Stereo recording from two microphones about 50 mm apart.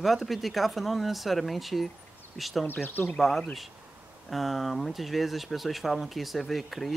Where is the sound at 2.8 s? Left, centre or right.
Left.